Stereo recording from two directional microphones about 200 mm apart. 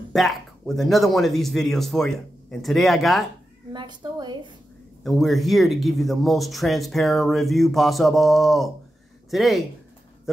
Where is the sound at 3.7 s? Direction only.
20° right (ahead or behind).